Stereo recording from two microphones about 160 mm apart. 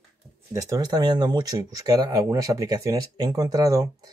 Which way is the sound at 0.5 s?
20° right (ahead or behind).